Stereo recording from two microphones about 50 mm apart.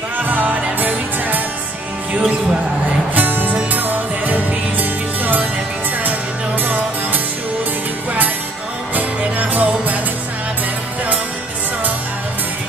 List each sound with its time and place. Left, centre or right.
0.3 s music: right
2.1 s music: centre
3.2 s music: right
6.6 s music: right
8.9 s music: right